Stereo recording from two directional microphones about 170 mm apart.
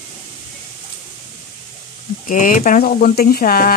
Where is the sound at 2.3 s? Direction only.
50° left (ahead or behind).